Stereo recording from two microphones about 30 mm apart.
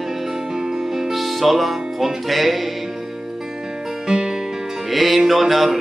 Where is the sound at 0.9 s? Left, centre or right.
Centre.